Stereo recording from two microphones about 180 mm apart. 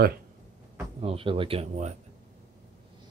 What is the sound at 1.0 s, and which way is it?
Speech, 30° right (ahead or behind).